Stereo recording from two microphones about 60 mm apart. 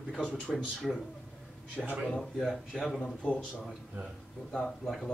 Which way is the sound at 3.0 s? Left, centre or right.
Centre.